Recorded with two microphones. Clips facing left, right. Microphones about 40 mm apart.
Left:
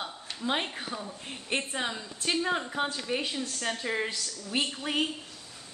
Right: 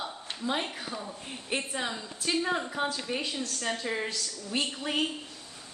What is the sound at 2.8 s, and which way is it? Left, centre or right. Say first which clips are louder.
A woman's voice: left 1 dB; left.